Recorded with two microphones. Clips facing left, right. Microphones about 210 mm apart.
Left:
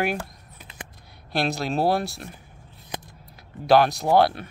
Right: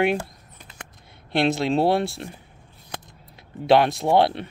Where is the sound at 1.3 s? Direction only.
25° right (ahead or behind).